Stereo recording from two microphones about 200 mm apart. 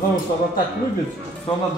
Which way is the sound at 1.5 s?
25° left (ahead or behind).